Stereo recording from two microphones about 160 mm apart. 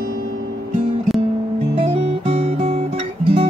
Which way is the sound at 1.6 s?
40° right (ahead or behind).